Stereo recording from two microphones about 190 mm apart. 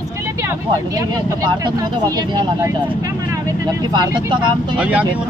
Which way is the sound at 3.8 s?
25° right (ahead or behind).